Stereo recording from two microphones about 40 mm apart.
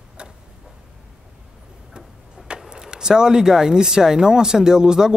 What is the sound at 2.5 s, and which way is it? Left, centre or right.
A man's voice, centre.